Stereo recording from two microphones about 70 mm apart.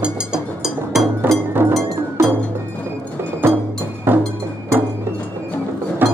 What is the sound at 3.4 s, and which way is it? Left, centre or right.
Music, right.